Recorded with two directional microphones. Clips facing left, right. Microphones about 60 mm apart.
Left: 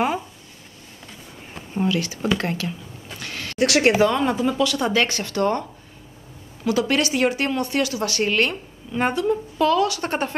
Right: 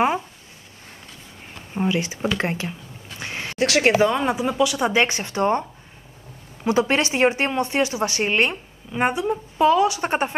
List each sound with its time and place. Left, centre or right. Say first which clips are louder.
1.7 s speech: even; right
3.2 s a sound: left 1 dB; right
4.0 s speech: left 1 dB; centre